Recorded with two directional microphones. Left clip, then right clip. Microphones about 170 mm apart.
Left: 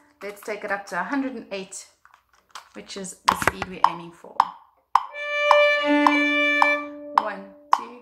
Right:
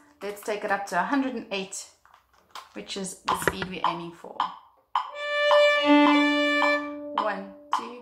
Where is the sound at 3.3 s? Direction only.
70° left (ahead or behind).